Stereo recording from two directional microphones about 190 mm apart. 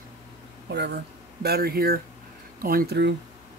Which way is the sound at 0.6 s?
65° right (ahead or behind).